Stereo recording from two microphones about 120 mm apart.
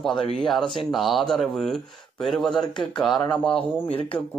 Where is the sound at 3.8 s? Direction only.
50° left (ahead or behind).